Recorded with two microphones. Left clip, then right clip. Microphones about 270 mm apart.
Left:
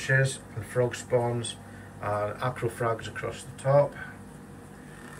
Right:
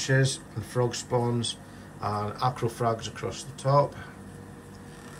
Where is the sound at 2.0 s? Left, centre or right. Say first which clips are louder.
Even; centre.